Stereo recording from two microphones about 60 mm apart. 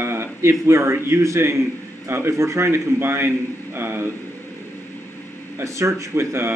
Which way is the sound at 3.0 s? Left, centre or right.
Right.